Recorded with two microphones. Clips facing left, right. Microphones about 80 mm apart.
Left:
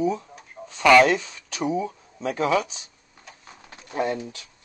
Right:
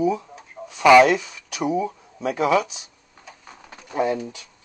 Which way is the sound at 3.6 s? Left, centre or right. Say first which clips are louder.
Right 3 dB; centre.